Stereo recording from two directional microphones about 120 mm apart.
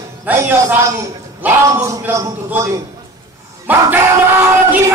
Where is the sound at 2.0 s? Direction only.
20° right (ahead or behind).